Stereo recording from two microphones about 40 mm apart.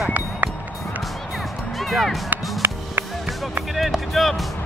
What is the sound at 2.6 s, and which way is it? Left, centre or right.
Music, right.